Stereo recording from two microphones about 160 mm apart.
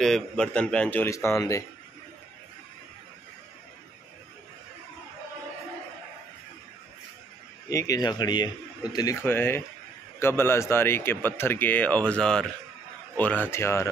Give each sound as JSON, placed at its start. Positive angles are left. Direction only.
{"t": 0.0, "sound": "speech", "side_deg": 5}
{"t": 7.7, "sound": "speech", "side_deg": 20}